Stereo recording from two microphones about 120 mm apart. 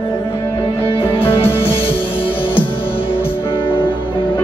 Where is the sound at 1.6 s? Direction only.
50° left (ahead or behind).